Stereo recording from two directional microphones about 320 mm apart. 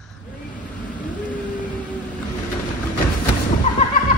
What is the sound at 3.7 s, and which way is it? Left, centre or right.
Neigh, left.